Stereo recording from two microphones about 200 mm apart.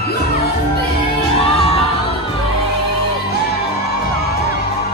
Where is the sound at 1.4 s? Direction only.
30° left (ahead or behind).